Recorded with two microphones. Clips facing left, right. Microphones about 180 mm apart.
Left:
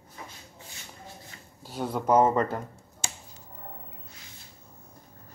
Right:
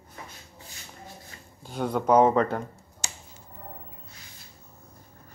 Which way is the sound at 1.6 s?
5° left (ahead or behind).